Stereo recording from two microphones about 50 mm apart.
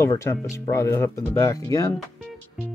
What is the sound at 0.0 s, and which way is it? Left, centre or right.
Speech, left.